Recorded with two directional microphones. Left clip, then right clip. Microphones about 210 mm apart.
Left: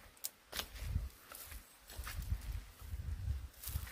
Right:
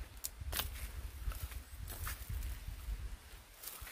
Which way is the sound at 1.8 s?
15° right (ahead or behind).